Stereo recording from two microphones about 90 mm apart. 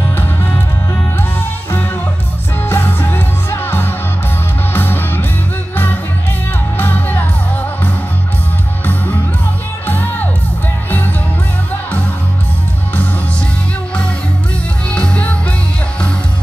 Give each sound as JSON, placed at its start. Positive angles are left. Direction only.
{"t": 0.1, "sound": "music", "side_deg": 25}
{"t": 2.6, "sound": "music", "side_deg": 25}
{"t": 6.8, "sound": "music", "side_deg": 20}
{"t": 9.8, "sound": "music", "side_deg": 20}
{"t": 14.9, "sound": "music", "side_deg": 15}